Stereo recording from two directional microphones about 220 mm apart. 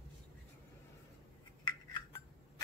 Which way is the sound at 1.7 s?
20° left (ahead or behind).